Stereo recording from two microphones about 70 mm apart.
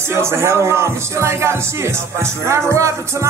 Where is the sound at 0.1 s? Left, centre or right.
Right.